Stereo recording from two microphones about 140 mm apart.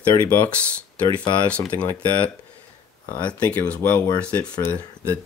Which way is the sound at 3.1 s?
10° left (ahead or behind).